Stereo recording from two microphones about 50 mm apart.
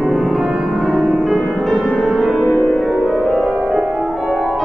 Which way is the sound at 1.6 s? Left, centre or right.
Left.